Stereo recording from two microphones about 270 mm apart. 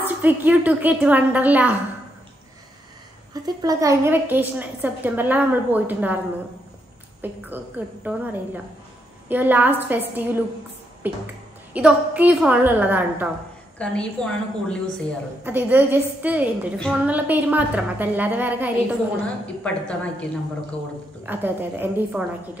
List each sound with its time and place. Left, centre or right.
0.0 s a woman's voice: centre
3.4 s a woman's voice: centre
7.2 s a woman's voice: centre
15.4 s a woman's voice: centre
21.3 s a woman's voice: centre